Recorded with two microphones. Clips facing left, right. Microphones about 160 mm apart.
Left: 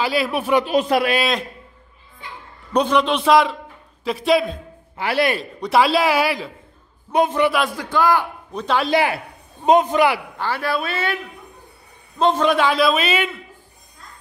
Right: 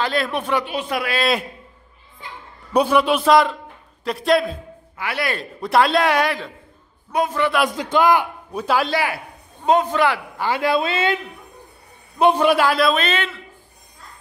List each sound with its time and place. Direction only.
0.0 s speech: 5° left (ahead or behind)
0.7 s a man's voice: 40° left (ahead or behind)
2.7 s a man's voice: 5° right (ahead or behind)
4.9 s speech: 30° left (ahead or behind)
5.4 s a man's voice: centre (ahead or behind)
7.1 s a man's voice: 25° left (ahead or behind)
7.6 s a man's voice: 20° right (ahead or behind)
8.9 s a man's voice: 25° left (ahead or behind)
10.4 s a man's voice: 20° right (ahead or behind)
12.2 s a man's voice: 10° right (ahead or behind); by 13.4 s 10° left (ahead or behind)